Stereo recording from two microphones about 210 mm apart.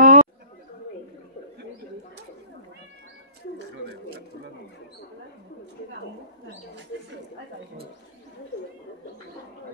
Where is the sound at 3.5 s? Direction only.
50° right (ahead or behind).